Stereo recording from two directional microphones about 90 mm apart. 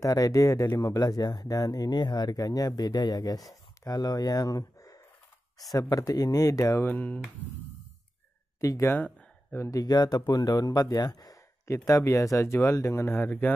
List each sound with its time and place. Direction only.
0.0 s speech: 40° left (ahead or behind)
6.8 s speech: 20° left (ahead or behind)
8.5 s speech: 35° left (ahead or behind)
8.9 s a sound: 25° left (ahead or behind)
9.8 s speech: 45° left (ahead or behind); by 13.5 s 20° left (ahead or behind)